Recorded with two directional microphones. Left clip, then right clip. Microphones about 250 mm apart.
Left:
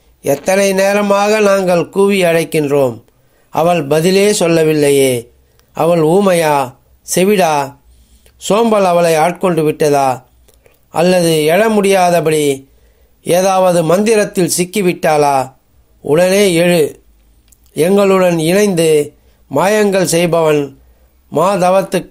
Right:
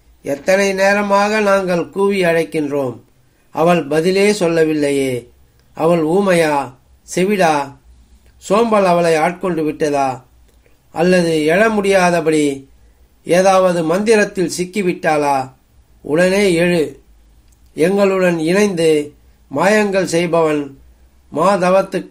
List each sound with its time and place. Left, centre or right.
0.2 s a man's voice: left